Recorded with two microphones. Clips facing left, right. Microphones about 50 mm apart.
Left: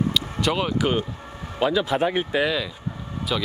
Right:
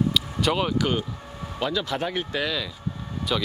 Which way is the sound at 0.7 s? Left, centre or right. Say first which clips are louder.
Left 2 dB; centre.